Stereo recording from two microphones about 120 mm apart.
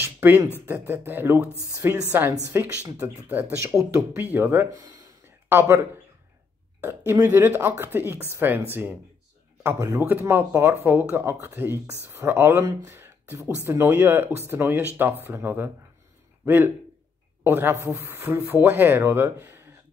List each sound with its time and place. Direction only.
0.0 s a sound: 15° right (ahead or behind)
0.7 s speech: 20° right (ahead or behind)
6.8 s speech: 20° right (ahead or behind)